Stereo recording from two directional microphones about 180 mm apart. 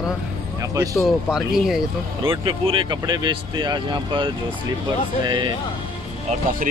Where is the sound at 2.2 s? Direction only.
30° right (ahead or behind).